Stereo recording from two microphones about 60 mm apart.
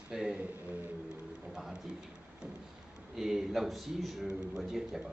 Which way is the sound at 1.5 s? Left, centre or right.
Centre.